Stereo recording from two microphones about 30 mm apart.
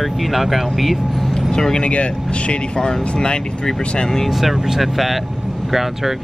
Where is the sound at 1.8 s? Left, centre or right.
Left.